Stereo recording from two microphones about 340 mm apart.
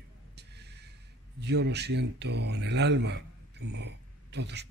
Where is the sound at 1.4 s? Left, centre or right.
Right.